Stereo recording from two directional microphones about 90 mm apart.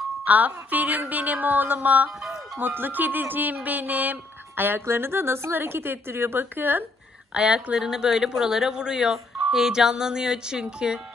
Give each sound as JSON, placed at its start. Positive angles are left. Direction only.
{"t": 0.2, "sound": "speech", "side_deg": -15}
{"t": 2.0, "sound": "speech", "side_deg": 0}
{"t": 2.6, "sound": "speech", "side_deg": -20}
{"t": 7.3, "sound": "speech", "side_deg": -10}